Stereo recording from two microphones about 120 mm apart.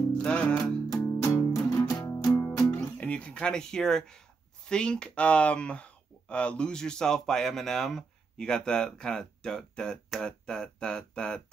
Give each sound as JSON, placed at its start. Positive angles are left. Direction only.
{"t": 0.1, "sound": "music", "side_deg": 10}
{"t": 2.3, "sound": "guitar", "side_deg": 30}
{"t": 2.7, "sound": "music", "side_deg": 10}
{"t": 4.6, "sound": "speech", "side_deg": 5}